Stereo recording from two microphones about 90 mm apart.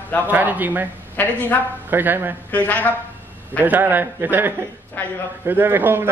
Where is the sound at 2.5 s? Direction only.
20° left (ahead or behind).